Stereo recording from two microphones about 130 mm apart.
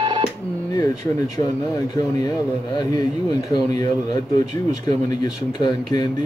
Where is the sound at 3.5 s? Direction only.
30° left (ahead or behind).